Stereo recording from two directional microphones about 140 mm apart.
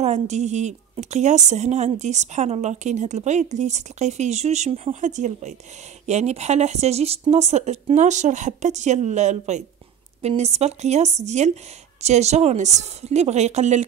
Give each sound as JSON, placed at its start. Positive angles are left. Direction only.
{"t": 0.0, "sound": "a woman's voice", "side_deg": -55}